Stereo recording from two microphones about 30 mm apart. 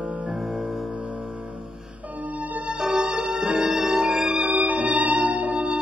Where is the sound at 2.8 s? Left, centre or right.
Right.